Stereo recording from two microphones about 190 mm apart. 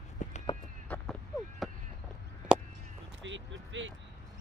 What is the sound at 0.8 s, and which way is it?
Vehicle, 10° left (ahead or behind).